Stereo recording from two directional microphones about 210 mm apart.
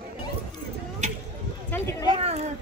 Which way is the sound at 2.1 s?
30° right (ahead or behind).